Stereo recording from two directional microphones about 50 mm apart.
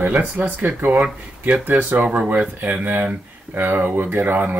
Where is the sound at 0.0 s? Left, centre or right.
Right.